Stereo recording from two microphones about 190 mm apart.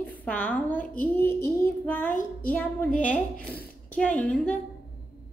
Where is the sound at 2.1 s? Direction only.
40° left (ahead or behind).